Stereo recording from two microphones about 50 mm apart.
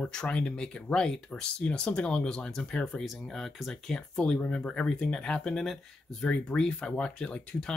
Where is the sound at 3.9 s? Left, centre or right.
Centre.